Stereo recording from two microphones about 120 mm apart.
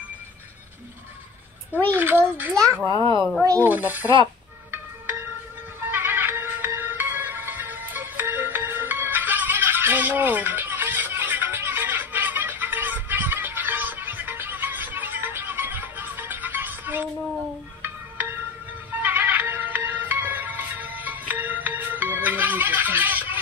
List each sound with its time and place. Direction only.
2.0 s a child's voice: 15° right (ahead or behind)
2.5 s a child's voice: 30° right (ahead or behind)
2.9 s speech: 30° left (ahead or behind)
3.6 s a child's voice: 15° right (ahead or behind)
5.9 s music: 15° right (ahead or behind)